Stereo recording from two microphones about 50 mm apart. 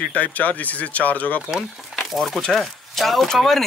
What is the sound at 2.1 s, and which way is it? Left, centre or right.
Speech, centre.